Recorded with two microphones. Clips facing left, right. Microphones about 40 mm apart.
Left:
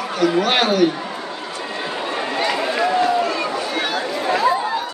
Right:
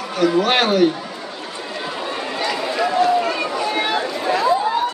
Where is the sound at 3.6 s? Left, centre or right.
Right.